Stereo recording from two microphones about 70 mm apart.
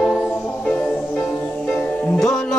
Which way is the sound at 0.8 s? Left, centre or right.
Centre.